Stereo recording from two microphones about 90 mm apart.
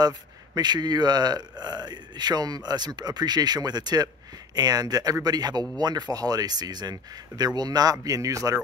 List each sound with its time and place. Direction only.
0.6 s speech: 50° right (ahead or behind)